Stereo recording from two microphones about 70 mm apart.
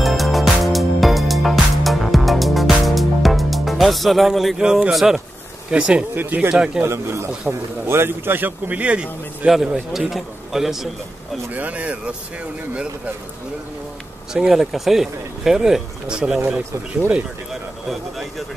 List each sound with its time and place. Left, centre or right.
0.0 s music: centre
4.9 s a man's voice: centre
5.7 s speech: centre
6.1 s a man's voice: right
6.5 s speech: centre
6.8 s a man's voice: right; by 10.9 s centre
11.5 s a man's voice: right
14.3 s speech: centre